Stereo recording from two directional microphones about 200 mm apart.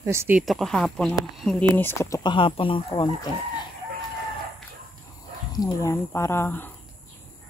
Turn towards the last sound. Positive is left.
turn(degrees=10)  # may be behind; listen again after turning